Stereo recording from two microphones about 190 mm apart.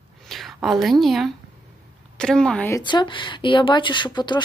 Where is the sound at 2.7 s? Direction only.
25° left (ahead or behind).